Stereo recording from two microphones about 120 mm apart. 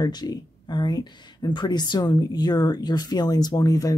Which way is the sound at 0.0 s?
35° left (ahead or behind).